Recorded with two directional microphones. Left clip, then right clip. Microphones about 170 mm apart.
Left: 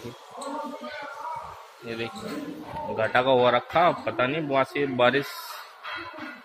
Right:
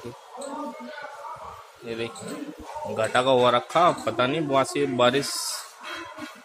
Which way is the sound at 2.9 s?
15° right (ahead or behind).